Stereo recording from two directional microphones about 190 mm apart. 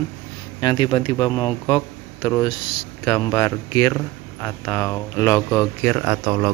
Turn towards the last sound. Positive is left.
turn(degrees=-20)  # may be behind; listen again after turning